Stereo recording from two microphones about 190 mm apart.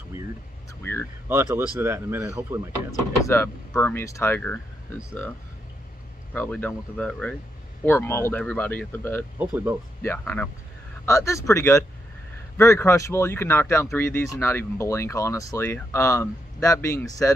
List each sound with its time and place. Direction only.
1.3 s speech: 10° right (ahead or behind)
2.9 s speech: 15° left (ahead or behind)
6.3 s speech: 10° left (ahead or behind)
9.4 s speech: 10° right (ahead or behind)
10.0 s speech: 10° left (ahead or behind)